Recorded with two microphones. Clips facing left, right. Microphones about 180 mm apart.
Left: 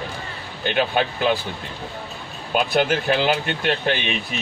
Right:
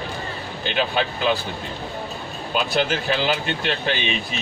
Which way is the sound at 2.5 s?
55° left (ahead or behind).